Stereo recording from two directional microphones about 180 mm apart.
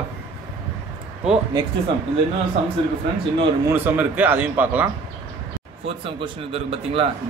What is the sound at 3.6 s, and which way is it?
A man's voice, 10° right (ahead or behind).